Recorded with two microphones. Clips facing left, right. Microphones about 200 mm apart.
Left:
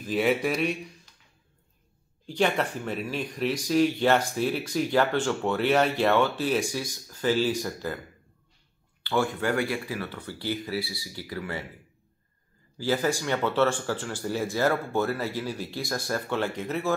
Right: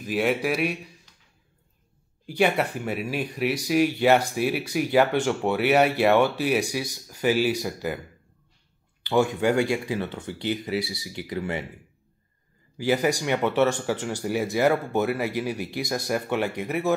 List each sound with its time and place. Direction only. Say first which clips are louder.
0.1 s speech: right 1 dB; centre (ahead or behind)
2.2 s speech: right 3 dB; 10° right (ahead or behind)
9.0 s speech: right 5 dB; 15° right (ahead or behind)
12.7 s speech: right 3 dB; 15° right (ahead or behind)